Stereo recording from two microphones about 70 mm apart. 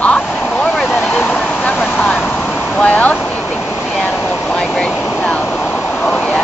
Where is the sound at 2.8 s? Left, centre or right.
Centre.